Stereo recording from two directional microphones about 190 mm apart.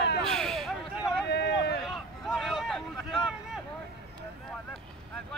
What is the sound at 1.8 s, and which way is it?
Vehicle, centre (ahead or behind).